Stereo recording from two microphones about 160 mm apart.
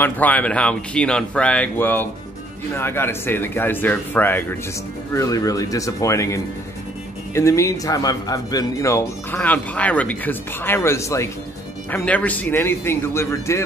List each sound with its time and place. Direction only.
0.0 s a man's voice: 10° left (ahead or behind)